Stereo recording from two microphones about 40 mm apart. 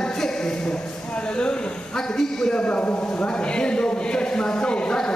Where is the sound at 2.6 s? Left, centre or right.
Left.